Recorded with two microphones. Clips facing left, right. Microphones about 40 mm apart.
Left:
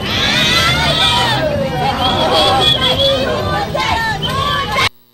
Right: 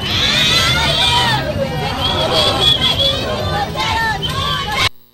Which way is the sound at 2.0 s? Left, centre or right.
Centre.